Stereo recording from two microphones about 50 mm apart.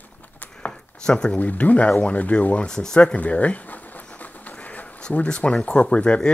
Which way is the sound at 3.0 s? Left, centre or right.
Left.